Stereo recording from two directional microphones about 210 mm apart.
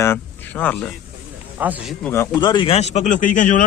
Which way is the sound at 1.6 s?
10° right (ahead or behind).